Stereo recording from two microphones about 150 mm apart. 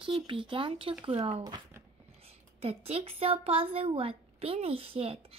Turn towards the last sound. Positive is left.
turn(degrees=-40)  # may be behind; listen again after turning